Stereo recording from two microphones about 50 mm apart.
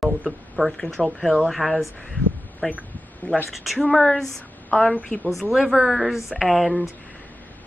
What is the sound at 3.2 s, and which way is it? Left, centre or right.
Speech, left.